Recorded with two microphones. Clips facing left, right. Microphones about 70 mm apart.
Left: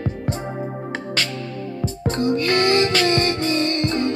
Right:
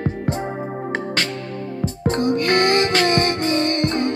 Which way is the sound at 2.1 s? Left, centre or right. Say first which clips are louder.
Right 1 dB; right.